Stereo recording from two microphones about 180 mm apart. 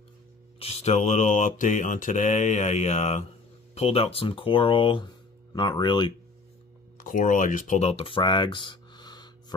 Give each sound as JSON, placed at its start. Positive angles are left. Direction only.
{"t": 0.6, "sound": "mantra", "side_deg": 35}
{"t": 3.7, "sound": "speech", "side_deg": 35}
{"t": 7.0, "sound": "speech", "side_deg": 50}